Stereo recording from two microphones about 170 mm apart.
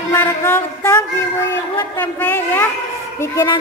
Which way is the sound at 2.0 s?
10° left (ahead or behind).